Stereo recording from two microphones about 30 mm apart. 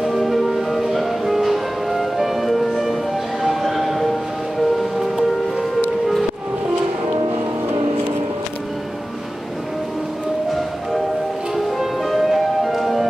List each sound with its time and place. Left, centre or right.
0.2 s music: centre
3.4 s a sound: centre
4.7 s music: centre
11.5 s music: centre